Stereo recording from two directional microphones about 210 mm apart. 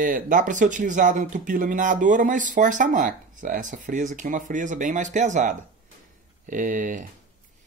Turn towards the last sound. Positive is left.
turn(degrees=-40)  # may be behind; listen again after turning